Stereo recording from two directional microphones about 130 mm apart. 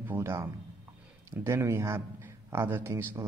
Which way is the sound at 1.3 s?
20° right (ahead or behind).